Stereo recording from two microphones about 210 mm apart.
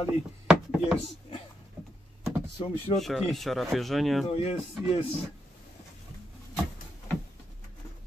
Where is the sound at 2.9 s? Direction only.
Centre (ahead or behind).